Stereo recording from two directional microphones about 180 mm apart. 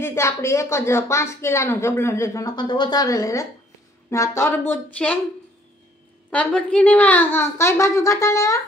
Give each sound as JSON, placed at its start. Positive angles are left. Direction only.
{"t": 0.0, "sound": "speech", "side_deg": 15}
{"t": 6.3, "sound": "speech", "side_deg": 5}